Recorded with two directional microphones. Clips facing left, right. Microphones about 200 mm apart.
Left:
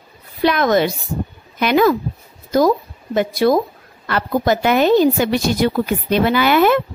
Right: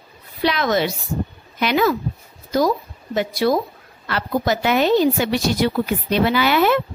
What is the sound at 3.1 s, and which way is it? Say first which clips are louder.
A woman's voice: left 4 dB; 50° left (ahead or behind).